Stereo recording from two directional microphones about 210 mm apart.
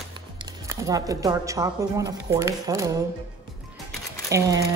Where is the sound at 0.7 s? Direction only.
15° right (ahead or behind).